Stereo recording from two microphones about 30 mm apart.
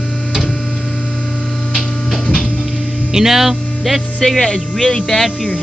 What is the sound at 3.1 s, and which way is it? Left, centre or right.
Speech, centre.